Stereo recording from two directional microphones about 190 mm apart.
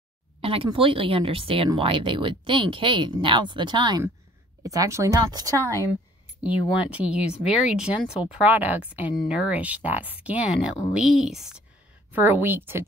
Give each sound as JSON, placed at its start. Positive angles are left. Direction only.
{"t": 0.4, "sound": "speech", "side_deg": -30}
{"t": 6.4, "sound": "speech", "side_deg": -5}